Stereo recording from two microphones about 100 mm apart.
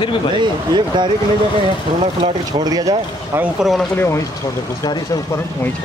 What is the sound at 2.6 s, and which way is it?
Speech, 40° right (ahead or behind).